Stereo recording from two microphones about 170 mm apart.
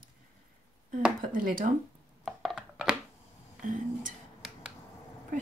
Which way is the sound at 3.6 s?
50° right (ahead or behind).